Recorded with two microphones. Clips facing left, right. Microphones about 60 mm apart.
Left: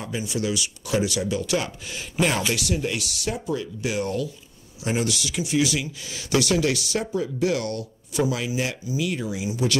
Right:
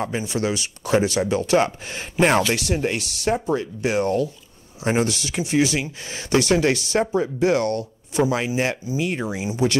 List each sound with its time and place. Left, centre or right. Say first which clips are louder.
0.0 s speech: right 4 dB; right